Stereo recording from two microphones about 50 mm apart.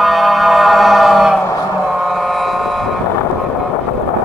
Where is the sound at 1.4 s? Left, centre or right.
Left.